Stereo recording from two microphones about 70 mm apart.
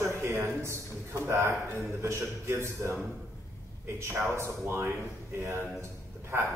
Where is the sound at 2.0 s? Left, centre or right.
Right.